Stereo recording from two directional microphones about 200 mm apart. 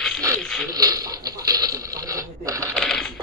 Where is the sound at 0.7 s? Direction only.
20° right (ahead or behind).